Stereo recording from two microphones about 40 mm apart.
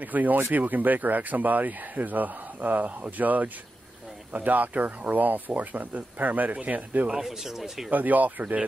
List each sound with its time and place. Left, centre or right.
0.0 s speech: right
7.2 s speech: centre
7.9 s speech: right